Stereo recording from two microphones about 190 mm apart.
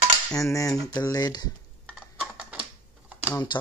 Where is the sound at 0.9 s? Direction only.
20° left (ahead or behind).